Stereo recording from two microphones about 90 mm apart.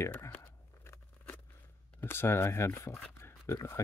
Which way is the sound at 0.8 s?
20° left (ahead or behind).